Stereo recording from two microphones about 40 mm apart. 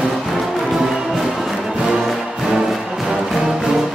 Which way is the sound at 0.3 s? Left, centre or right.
Centre.